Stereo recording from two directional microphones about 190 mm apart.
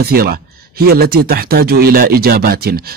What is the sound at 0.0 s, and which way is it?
A man's voice, 55° right (ahead or behind).